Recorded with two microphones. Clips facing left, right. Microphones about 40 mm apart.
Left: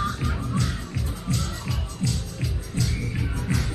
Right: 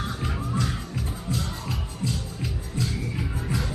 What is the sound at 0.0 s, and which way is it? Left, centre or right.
Music, centre.